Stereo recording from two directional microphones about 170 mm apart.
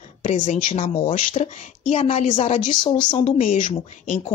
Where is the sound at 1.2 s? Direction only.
50° left (ahead or behind).